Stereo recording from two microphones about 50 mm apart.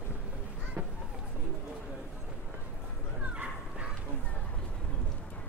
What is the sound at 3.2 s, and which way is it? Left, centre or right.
Dog, right.